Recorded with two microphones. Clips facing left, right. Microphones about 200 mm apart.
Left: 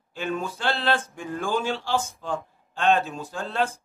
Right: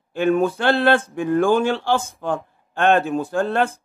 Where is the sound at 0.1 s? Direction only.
55° right (ahead or behind).